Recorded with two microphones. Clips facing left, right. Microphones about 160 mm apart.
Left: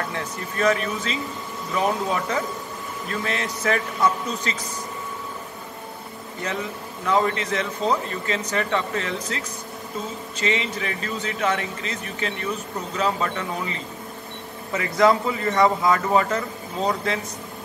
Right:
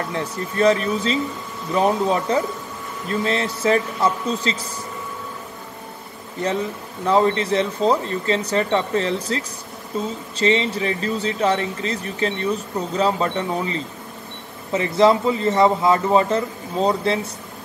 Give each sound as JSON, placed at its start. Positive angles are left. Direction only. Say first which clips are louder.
{"t": 0.1, "sound": "a man's voice", "louder": "right 4 dB", "side_deg": -30}
{"t": 7.1, "sound": "speech", "louder": "right 4 dB", "side_deg": -30}
{"t": 10.4, "sound": "a man's voice", "louder": "right 6 dB", "side_deg": -30}